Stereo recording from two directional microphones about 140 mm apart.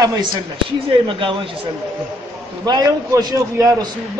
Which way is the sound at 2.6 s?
30° right (ahead or behind).